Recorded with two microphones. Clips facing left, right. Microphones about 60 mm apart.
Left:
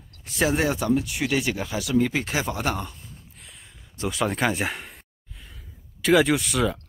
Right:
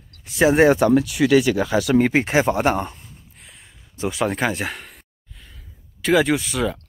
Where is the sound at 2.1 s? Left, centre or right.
Right.